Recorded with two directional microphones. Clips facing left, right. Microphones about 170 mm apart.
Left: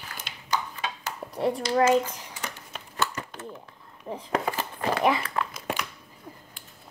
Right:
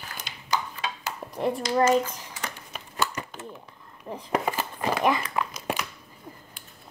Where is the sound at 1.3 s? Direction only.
5° left (ahead or behind).